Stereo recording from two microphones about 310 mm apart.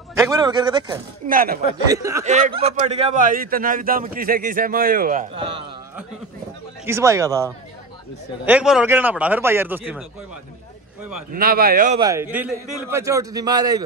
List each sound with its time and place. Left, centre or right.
0.3 s a man's voice: centre
1.3 s a man's voice: right
1.9 s a man's voice: centre
2.2 s a man's voice: right
6.9 s a man's voice: centre
11.3 s a man's voice: right
12.0 s a man's voice: centre